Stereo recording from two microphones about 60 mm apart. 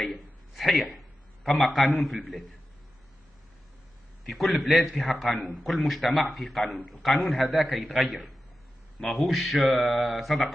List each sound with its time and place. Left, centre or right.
0.0 s speech: centre
0.9 s a sound: centre
2.0 s a man's voice: centre
4.3 s a man's voice: centre